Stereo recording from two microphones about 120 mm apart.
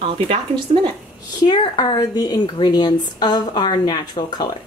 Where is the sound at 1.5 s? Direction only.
35° left (ahead or behind).